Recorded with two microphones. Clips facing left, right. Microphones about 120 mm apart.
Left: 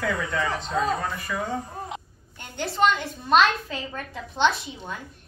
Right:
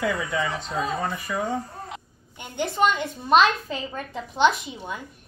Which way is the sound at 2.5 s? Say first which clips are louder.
Even; 15° right (ahead or behind).